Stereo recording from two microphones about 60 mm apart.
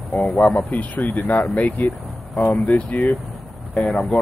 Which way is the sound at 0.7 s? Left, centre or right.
Left.